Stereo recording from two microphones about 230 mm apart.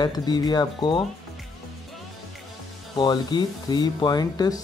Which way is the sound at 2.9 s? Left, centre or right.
Centre.